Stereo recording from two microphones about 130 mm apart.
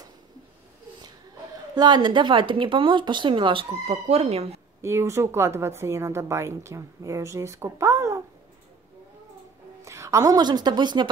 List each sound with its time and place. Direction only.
1.8 s speech: 35° right (ahead or behind); by 4.6 s 50° right (ahead or behind)
4.8 s a woman's voice: 20° right (ahead or behind)
9.8 s a woman's voice: 25° right (ahead or behind)